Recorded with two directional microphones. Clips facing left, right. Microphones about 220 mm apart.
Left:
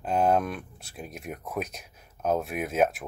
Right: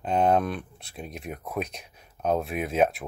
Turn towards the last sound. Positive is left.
turn(degrees=5)  # may be behind; listen again after turning